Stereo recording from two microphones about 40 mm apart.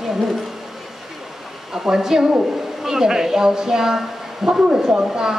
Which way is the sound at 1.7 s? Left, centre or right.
Centre.